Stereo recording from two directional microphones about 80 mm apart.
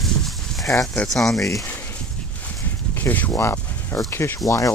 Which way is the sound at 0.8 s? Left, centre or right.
Centre.